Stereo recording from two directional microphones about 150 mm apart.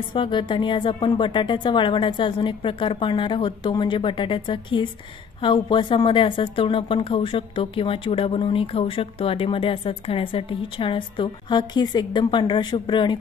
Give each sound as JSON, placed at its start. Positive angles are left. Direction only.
{"t": 0.1, "sound": "a woman's voice", "side_deg": 30}